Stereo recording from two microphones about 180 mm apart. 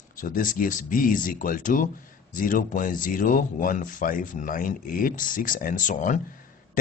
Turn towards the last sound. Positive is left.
turn(degrees=45)  # may be behind; listen again after turning